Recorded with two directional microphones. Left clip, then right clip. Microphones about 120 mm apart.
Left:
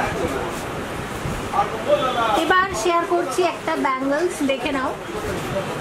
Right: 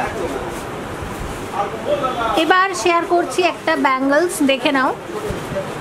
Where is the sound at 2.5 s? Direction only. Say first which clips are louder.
Right 4 dB; 35° right (ahead or behind).